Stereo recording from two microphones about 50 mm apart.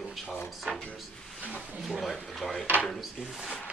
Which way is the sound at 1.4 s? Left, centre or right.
Left.